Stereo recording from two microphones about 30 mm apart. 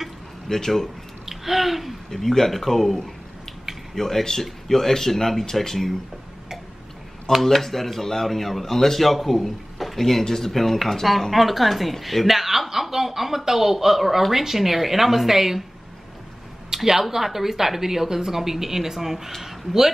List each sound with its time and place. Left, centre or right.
0.5 s speech: left
1.2 s a sound: centre
2.0 s speech: centre
7.4 s a woman's voice: centre
16.7 s a woman's voice: centre